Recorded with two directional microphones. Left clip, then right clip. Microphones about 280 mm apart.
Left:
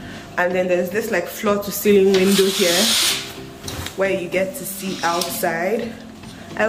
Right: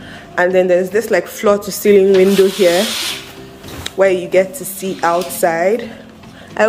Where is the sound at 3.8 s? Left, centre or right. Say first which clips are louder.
Right 8 dB; centre.